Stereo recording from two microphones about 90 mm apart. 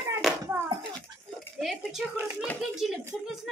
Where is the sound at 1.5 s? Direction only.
Centre (ahead or behind).